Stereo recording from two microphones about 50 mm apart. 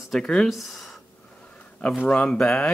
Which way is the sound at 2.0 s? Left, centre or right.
Left.